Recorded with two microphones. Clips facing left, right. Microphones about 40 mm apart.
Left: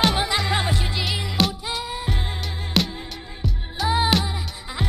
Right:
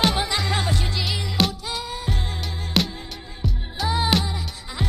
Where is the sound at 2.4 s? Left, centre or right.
Centre.